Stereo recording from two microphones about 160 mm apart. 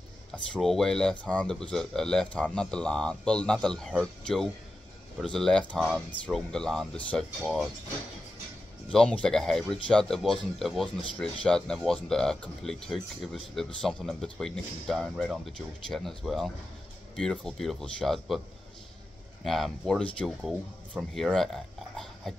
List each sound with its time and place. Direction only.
0.3 s speech: centre (ahead or behind)
5.2 s speech: 5° left (ahead or behind)
8.9 s speech: 5° left (ahead or behind)
19.4 s speech: centre (ahead or behind)
21.9 s a sound: centre (ahead or behind)